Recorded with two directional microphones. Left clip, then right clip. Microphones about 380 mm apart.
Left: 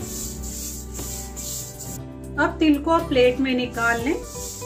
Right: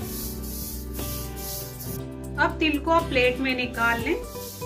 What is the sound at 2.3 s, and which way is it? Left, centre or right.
Speech, left.